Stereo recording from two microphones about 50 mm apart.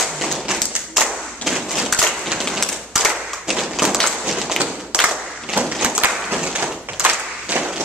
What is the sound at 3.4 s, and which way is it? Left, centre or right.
Tap, centre.